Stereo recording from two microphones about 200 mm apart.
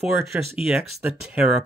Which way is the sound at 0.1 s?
Centre (ahead or behind).